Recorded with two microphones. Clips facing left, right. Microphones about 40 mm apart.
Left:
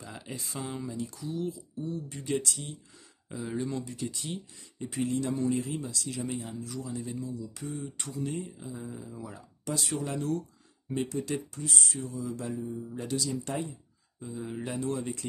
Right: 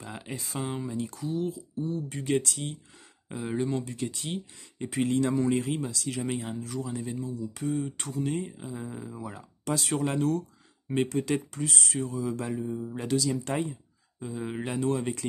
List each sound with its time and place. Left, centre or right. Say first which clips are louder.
0.0 s speech: right 3 dB; right
0.9 s speech: right 4 dB; right
1.5 s speech: right 4 dB; right
3.3 s speech: right 4 dB; right
3.9 s speech: right 3 dB; right
7.2 s speech: right 6 dB; right
12.6 s speech: right 3 dB; right
13.4 s speech: right 4 dB; right
14.2 s speech: right 3 dB; right